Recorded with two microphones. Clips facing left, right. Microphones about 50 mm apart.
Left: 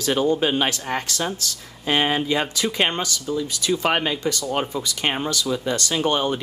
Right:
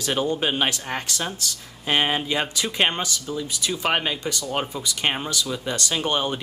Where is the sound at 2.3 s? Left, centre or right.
Centre.